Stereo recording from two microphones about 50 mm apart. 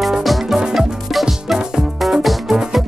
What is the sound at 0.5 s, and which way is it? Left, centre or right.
Music, centre.